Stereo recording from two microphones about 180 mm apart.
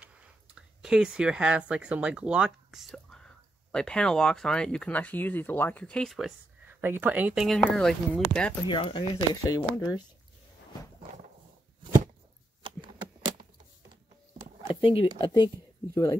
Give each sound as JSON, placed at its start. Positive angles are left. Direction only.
{"t": 0.0, "sound": "speech", "side_deg": -5}
{"t": 6.7, "sound": "speech", "side_deg": -10}
{"t": 8.6, "sound": "speech", "side_deg": 25}
{"t": 14.7, "sound": "speech", "side_deg": 30}